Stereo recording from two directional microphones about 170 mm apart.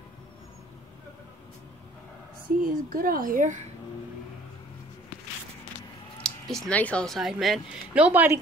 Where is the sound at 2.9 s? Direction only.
55° right (ahead or behind).